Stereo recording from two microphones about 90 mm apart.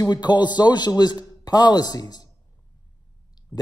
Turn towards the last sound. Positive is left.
turn(degrees=45)  # may be behind; listen again after turning